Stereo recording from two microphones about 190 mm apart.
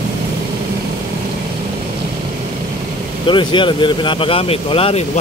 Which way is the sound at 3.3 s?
25° left (ahead or behind).